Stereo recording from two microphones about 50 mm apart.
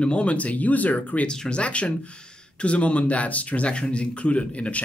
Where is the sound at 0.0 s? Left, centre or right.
Left.